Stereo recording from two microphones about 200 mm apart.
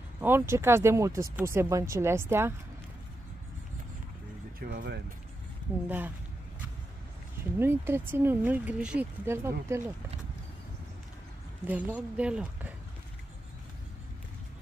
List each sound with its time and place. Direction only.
0.2 s speech: 10° right (ahead or behind)
4.6 s speech: 50° right (ahead or behind)
5.9 s speech: 10° right (ahead or behind)
7.5 s speech: 10° right (ahead or behind)
11.6 s speech: 5° right (ahead or behind)